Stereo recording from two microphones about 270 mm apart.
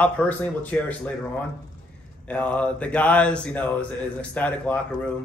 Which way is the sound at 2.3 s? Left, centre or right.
Centre.